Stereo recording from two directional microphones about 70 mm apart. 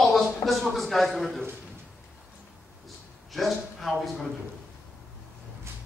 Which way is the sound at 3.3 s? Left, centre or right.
Centre.